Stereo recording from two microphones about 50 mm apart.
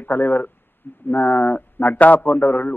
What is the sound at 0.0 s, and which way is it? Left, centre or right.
A man's voice, left.